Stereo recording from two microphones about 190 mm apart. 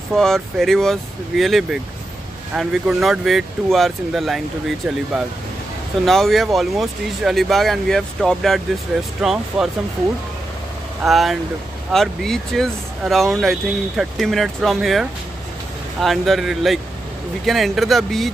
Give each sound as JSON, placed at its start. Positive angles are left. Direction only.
{"t": 0.1, "sound": "speech", "side_deg": 0}
{"t": 11.0, "sound": "speech", "side_deg": 0}